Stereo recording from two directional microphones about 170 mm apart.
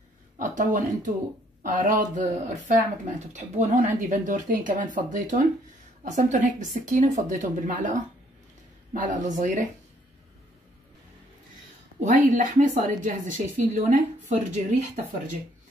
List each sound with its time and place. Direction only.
0.4 s a woman's voice: 50° right (ahead or behind)
12.0 s a woman's voice: 50° right (ahead or behind)